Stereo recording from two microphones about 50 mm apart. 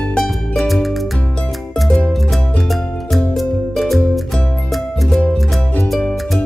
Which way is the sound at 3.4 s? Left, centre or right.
Centre.